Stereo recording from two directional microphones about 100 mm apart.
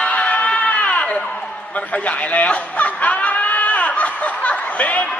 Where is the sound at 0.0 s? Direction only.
15° left (ahead or behind).